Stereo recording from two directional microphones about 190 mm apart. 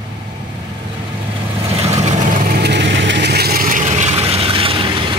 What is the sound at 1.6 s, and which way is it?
Vehicle, 35° right (ahead or behind).